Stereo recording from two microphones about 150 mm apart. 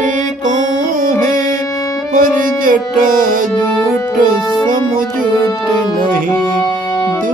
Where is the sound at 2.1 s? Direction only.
65° right (ahead or behind).